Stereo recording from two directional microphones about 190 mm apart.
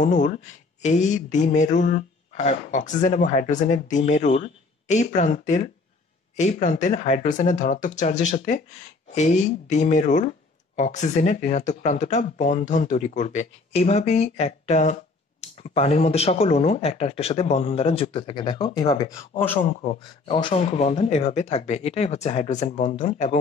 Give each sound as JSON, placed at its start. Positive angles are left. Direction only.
{"t": 0.0, "sound": "speech", "side_deg": 45}
{"t": 20.0, "sound": "speech", "side_deg": 25}